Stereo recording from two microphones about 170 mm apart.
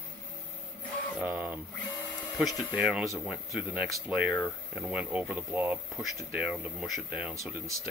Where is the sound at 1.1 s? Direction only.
10° right (ahead or behind).